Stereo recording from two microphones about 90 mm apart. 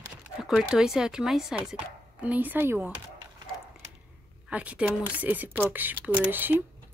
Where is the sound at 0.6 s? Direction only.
10° right (ahead or behind).